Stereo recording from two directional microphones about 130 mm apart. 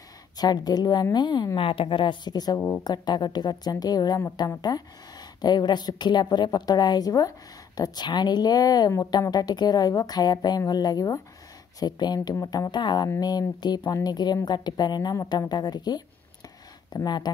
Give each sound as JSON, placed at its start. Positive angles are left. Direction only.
{"t": 0.4, "sound": "a woman's voice", "side_deg": 30}